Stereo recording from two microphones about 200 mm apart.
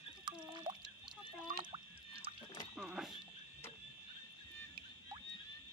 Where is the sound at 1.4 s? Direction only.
25° right (ahead or behind).